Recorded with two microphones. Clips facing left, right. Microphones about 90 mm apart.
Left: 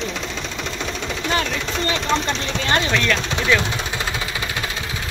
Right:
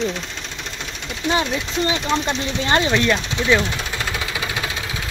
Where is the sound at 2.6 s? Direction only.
25° right (ahead or behind).